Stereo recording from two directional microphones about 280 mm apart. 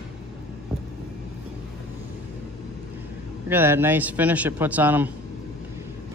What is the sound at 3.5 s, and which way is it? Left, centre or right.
A man's voice, centre.